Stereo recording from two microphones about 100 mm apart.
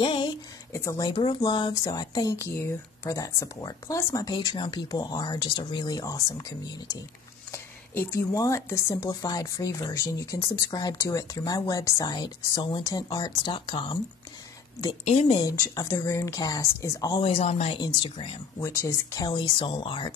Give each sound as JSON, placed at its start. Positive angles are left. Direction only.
{"t": 0.0, "sound": "a sound", "side_deg": 55}
{"t": 0.7, "sound": "speech", "side_deg": 30}
{"t": 1.0, "sound": "speech", "side_deg": 50}
{"t": 1.7, "sound": "speech", "side_deg": 40}
{"t": 7.9, "sound": "speech", "side_deg": 20}
{"t": 8.3, "sound": "speech", "side_deg": 30}
{"t": 15.0, "sound": "speech", "side_deg": 90}
{"t": 15.7, "sound": "speech", "side_deg": 35}
{"t": 17.2, "sound": "speech", "side_deg": 90}
{"t": 17.7, "sound": "speech", "side_deg": 50}
{"t": 18.6, "sound": "speech", "side_deg": 35}